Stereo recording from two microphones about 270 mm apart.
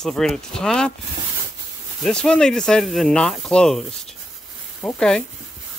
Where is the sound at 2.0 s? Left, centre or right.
Centre.